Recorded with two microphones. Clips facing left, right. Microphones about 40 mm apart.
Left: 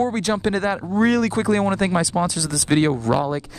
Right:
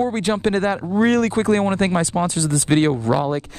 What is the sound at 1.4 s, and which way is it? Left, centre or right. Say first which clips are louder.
Speech: right 2 dB; right.